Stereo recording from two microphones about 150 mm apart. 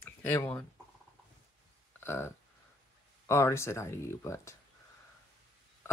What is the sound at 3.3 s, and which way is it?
Speech, 20° left (ahead or behind).